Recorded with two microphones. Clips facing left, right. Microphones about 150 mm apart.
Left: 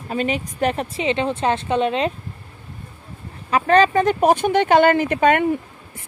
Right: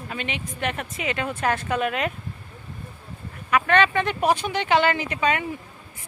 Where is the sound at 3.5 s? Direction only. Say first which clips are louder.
Left 5 dB; 30° left (ahead or behind); by 5.6 s 55° left (ahead or behind).